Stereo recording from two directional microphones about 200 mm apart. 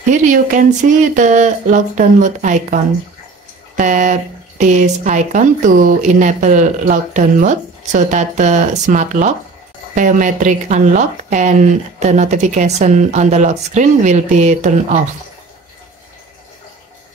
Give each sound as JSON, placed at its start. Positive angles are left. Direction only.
{"t": 0.0, "sound": "speech", "side_deg": -40}